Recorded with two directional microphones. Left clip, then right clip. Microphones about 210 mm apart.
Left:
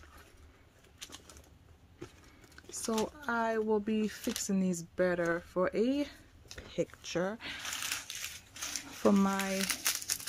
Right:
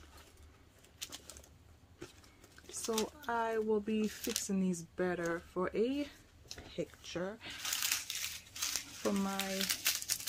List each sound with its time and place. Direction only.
0.9 s bird: centre (ahead or behind)
2.9 s speech: 50° left (ahead or behind)
4.2 s speech: centre (ahead or behind)
4.5 s speech: 50° left (ahead or behind)
7.6 s crushing: centre (ahead or behind)
9.0 s speech: 55° left (ahead or behind)
9.5 s crumpling: 30° left (ahead or behind)